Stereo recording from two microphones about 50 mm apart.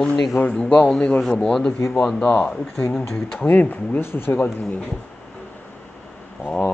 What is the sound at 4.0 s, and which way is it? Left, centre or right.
Speech, left.